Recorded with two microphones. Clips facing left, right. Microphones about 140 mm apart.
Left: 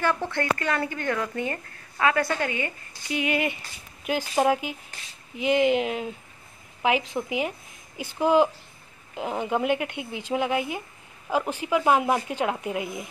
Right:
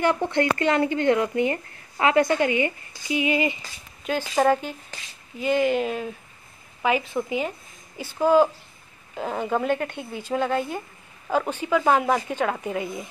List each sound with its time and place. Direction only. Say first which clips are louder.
0.0 s a woman's voice: right 4 dB; 15° right (ahead or behind)
3.2 s speech: right 3 dB; 60° left (ahead or behind)
4.4 s a woman's voice: right 2 dB; 10° left (ahead or behind)